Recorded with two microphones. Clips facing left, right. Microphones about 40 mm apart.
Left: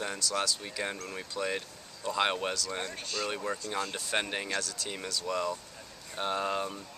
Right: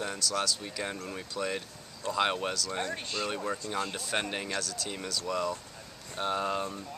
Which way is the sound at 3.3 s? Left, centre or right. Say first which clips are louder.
Right 1 dB; centre.